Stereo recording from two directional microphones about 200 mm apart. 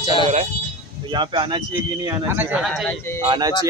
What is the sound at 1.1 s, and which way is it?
Speech, 25° right (ahead or behind).